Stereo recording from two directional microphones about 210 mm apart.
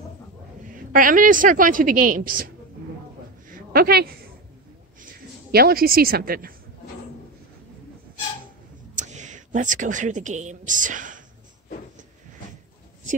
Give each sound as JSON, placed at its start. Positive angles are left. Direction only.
{"t": 0.7, "sound": "a woman's voice", "side_deg": -40}
{"t": 3.4, "sound": "a sound", "side_deg": -45}
{"t": 5.5, "sound": "speech", "side_deg": -45}
{"t": 8.9, "sound": "speech", "side_deg": -35}